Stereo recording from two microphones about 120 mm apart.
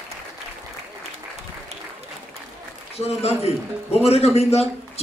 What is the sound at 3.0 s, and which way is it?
A man's voice, 60° left (ahead or behind).